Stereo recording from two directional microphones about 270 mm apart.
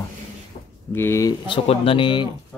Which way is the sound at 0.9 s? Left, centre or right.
Centre.